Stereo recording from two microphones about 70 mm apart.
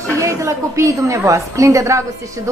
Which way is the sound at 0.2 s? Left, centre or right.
Right.